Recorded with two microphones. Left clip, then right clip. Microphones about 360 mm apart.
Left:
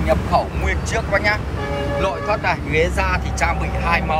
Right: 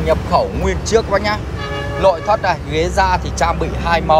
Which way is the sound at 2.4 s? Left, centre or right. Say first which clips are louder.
Right 1 dB; centre.